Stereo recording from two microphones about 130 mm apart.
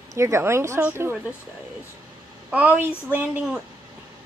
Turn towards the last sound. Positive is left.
turn(degrees=-5)  # may be behind; listen again after turning